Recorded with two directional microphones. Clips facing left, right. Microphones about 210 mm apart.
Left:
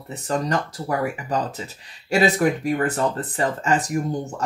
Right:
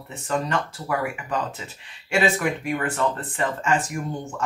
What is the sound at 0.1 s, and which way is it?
Speech, 35° left (ahead or behind).